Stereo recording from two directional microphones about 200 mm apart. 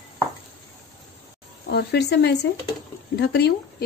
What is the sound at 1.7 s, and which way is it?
Speech, 55° left (ahead or behind).